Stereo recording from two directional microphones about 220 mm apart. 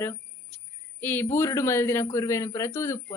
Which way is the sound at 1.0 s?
10° left (ahead or behind).